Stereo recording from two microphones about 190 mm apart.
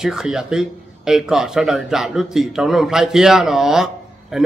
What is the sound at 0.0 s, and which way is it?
Speech, 5° right (ahead or behind).